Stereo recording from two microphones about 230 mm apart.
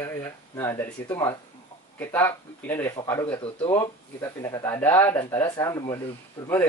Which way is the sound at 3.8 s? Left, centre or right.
Centre.